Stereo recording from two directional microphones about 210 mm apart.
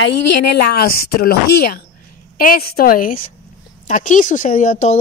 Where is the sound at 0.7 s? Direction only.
45° left (ahead or behind).